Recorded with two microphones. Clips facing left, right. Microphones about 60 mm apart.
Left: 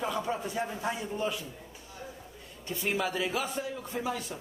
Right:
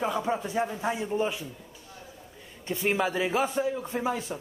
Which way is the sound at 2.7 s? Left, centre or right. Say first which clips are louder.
Right 4 dB; right.